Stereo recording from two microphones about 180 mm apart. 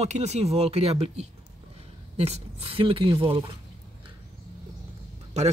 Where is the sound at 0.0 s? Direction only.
40° right (ahead or behind).